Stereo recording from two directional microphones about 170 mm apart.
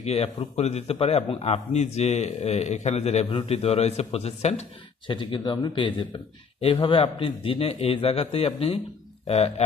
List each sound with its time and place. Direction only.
0.0 s a man's voice: 35° left (ahead or behind)